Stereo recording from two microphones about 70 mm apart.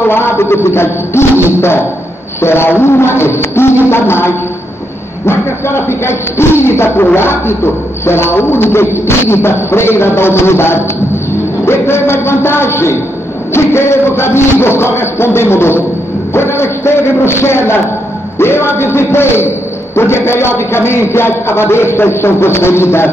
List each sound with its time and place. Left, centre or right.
0.0 s a man's voice: left